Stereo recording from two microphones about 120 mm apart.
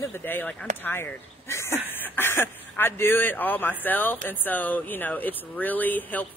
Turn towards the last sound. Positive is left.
turn(degrees=15)  # may be behind; listen again after turning